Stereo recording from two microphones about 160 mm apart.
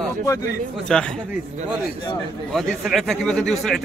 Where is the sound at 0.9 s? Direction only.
5° left (ahead or behind).